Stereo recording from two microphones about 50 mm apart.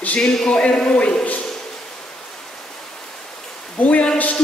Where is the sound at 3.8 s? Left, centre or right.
Left.